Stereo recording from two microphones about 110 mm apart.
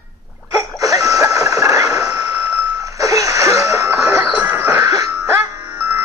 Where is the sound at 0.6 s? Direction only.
30° right (ahead or behind).